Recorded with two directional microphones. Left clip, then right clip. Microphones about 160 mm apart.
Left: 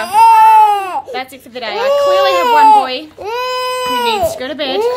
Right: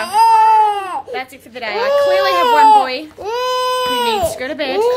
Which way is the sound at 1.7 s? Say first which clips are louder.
Left 2 dB; 5° right (ahead or behind).